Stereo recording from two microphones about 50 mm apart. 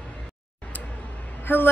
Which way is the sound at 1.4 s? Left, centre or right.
Left.